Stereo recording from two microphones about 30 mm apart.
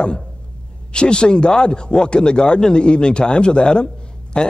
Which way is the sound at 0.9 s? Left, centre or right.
Left.